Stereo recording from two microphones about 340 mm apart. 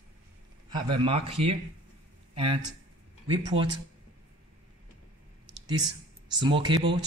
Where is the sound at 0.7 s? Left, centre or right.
Centre.